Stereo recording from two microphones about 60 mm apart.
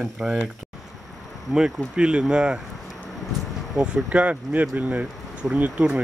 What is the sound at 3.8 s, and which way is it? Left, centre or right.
Speech, centre.